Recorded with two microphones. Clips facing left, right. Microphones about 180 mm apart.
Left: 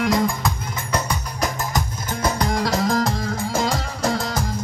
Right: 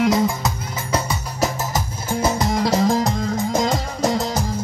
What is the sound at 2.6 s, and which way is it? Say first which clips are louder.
Music: right 4 dB; 20° right (ahead or behind).